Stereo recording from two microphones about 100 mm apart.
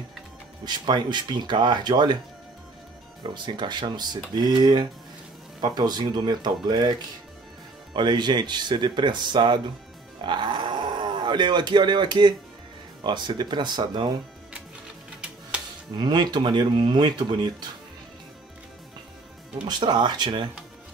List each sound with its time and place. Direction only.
0.7 s speech: 45° right (ahead or behind)
3.4 s speech: 50° right (ahead or behind)
16.0 s speech: 45° right (ahead or behind)
19.7 s speech: 50° right (ahead or behind)